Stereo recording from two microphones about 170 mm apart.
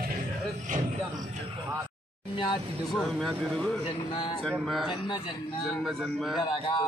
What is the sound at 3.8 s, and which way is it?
Speech, 30° left (ahead or behind).